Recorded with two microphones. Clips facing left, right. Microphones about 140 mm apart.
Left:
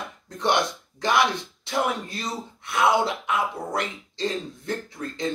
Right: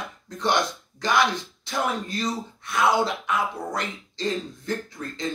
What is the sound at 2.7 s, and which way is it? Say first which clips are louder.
Speech: left 1 dB; 25° left (ahead or behind).